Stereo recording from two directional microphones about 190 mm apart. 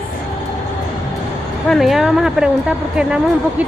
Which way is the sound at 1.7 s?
Centre (ahead or behind).